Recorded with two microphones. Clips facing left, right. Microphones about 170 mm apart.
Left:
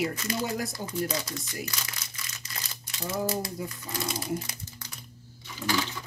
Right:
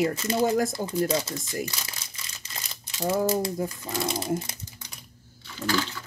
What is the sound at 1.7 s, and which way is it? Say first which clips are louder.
Crumpling: right 1 dB; 25° right (ahead or behind).